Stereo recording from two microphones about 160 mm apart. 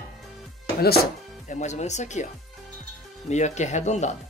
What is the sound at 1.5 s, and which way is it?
Speech, 45° left (ahead or behind).